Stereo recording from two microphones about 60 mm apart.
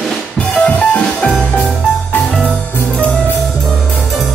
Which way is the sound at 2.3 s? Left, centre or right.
Centre.